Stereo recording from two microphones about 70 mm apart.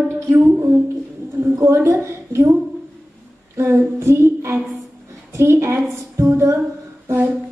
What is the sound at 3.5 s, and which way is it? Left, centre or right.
A woman's voice, right.